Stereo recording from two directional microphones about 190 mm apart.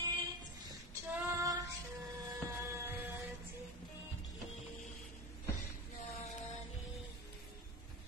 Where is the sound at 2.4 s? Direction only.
10° right (ahead or behind).